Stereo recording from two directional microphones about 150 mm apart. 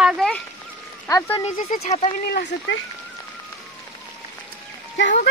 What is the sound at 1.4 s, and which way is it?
Speech, 50° left (ahead or behind).